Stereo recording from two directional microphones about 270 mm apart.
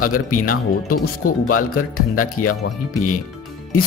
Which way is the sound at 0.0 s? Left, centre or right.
Left.